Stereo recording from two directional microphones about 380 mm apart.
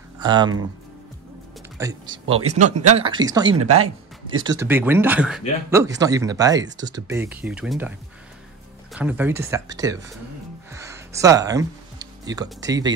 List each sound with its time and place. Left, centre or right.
0.2 s speech: centre
1.8 s speech: centre
3.5 s speech: right
4.4 s speech: centre
8.9 s speech: centre
10.7 s music: centre